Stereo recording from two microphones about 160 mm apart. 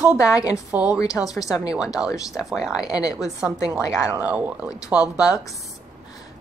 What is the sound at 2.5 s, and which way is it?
A woman's voice, 5° right (ahead or behind).